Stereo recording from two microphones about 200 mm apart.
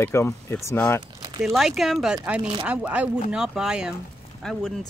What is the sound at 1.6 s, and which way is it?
Speech, centre (ahead or behind).